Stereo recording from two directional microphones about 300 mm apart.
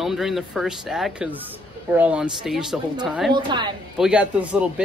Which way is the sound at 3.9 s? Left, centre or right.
Centre.